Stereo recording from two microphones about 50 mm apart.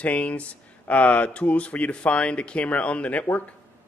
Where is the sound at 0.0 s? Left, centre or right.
Left.